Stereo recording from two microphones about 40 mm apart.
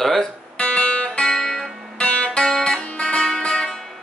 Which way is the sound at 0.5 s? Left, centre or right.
Left.